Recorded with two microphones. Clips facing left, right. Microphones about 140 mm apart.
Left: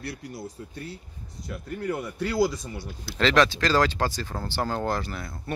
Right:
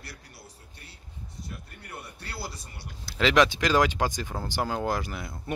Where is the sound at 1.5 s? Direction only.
90° left.